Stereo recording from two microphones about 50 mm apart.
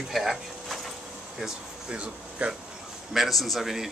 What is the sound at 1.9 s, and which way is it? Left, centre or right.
Speech, right.